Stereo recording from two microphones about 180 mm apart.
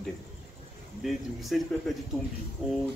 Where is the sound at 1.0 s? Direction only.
Centre (ahead or behind).